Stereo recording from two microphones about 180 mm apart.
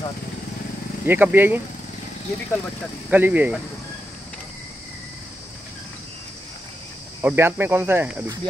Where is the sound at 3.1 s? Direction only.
10° right (ahead or behind).